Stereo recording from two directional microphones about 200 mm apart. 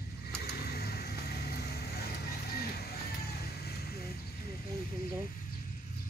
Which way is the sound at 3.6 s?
50° left (ahead or behind).